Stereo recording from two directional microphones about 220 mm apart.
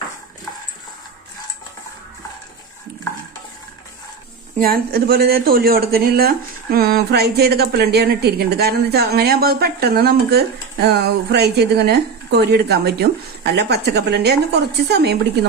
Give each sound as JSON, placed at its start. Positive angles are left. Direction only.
{"t": 4.6, "sound": "speech", "side_deg": -40}